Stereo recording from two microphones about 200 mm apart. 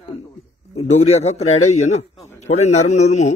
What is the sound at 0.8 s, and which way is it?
A man's voice, 35° left (ahead or behind).